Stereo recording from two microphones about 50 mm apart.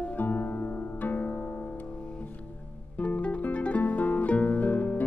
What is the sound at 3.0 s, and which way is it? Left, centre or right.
Music, left.